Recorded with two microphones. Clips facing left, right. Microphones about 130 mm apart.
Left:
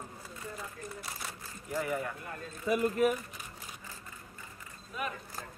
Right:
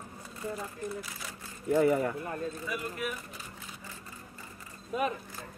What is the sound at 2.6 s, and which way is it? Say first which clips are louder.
Speech: left 8 dB; 35° left (ahead or behind).